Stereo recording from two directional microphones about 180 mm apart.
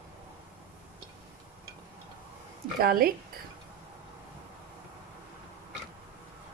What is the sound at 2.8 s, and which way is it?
Speech, 55° right (ahead or behind).